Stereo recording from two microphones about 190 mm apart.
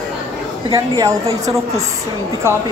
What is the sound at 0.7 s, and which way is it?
Speech, 20° right (ahead or behind).